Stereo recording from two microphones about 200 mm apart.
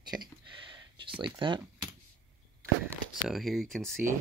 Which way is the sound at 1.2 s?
25° right (ahead or behind).